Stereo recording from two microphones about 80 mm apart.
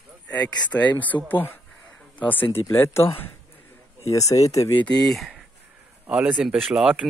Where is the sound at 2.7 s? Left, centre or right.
Left.